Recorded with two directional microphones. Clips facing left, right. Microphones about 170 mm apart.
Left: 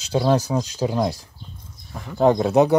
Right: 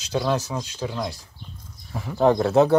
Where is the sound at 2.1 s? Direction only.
15° left (ahead or behind).